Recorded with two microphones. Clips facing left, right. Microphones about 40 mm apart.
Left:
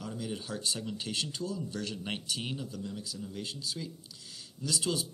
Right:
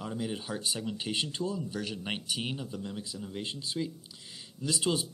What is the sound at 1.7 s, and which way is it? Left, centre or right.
Speech, centre.